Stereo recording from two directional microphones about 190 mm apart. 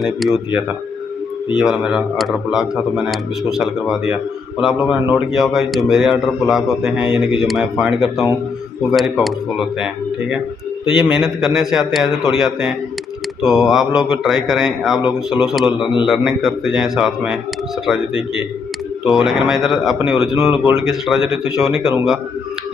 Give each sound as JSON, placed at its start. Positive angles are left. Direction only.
{"t": 0.0, "sound": "speech", "side_deg": 0}
{"t": 1.6, "sound": "speech", "side_deg": 0}
{"t": 11.1, "sound": "speech", "side_deg": 0}
{"t": 15.8, "sound": "a man's voice", "side_deg": 25}
{"t": 16.1, "sound": "speech", "side_deg": 0}
{"t": 19.0, "sound": "speech", "side_deg": 0}